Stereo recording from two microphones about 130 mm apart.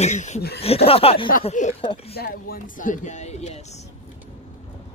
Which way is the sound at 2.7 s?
85° left.